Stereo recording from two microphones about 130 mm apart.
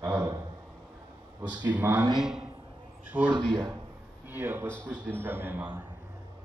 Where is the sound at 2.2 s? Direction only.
5° right (ahead or behind).